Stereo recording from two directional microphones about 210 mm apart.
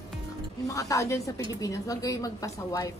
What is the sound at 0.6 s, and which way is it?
A woman's voice, 15° left (ahead or behind).